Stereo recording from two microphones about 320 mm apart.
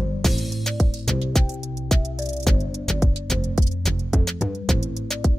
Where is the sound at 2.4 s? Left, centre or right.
Centre.